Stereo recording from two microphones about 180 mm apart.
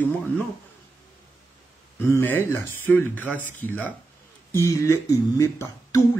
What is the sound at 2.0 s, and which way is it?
Speech, 15° left (ahead or behind).